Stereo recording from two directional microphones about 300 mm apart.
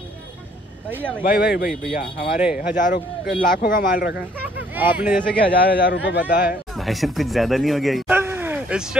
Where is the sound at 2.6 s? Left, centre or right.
Left.